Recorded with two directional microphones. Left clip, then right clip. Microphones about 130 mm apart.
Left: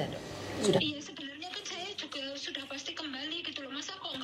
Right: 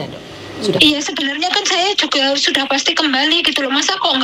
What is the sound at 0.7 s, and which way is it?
A woman's voice, 55° right (ahead or behind).